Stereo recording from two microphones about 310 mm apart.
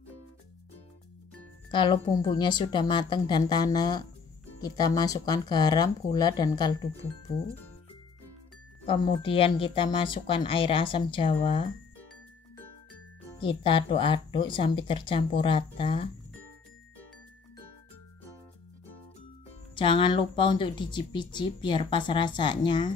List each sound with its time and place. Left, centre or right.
1.7 s speech: centre
8.8 s speech: centre
13.4 s speech: centre
19.7 s speech: centre